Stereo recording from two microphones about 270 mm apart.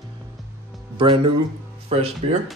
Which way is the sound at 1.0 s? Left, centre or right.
Centre.